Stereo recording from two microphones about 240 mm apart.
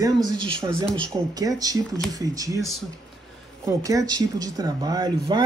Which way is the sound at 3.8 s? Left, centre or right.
Centre.